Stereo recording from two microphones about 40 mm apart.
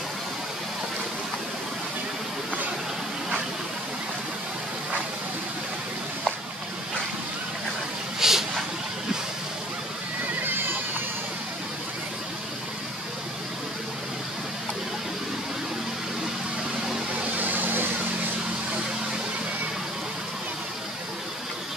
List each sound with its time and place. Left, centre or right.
8.2 s vehicle: centre
10.4 s neigh: right
17.4 s vehicle: right